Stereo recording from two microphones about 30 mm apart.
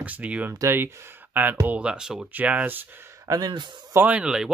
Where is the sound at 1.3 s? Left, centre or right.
Right.